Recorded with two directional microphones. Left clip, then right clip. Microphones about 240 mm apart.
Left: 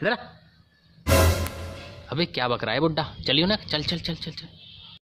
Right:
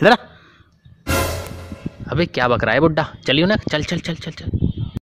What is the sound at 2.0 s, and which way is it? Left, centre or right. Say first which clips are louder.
Speech: right 8 dB; right.